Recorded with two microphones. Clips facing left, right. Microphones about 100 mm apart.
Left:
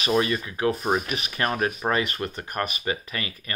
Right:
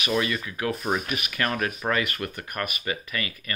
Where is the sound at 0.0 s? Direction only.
30° left (ahead or behind).